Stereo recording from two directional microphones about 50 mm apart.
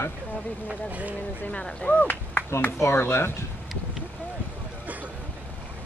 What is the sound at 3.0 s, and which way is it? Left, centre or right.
Speech, left.